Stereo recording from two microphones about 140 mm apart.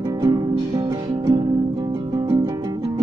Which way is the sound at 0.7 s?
30° right (ahead or behind).